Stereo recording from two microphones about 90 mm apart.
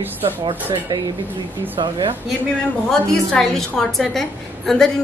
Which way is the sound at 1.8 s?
60° right (ahead or behind).